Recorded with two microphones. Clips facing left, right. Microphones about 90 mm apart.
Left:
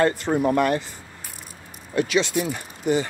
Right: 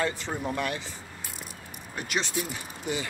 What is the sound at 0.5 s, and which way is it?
Speech, 50° left (ahead or behind).